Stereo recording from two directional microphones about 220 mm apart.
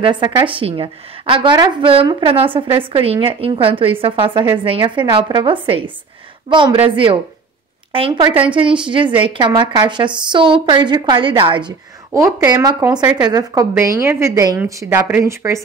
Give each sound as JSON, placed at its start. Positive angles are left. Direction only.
{"t": 0.0, "sound": "a woman's voice", "side_deg": -20}
{"t": 7.9, "sound": "a woman's voice", "side_deg": -25}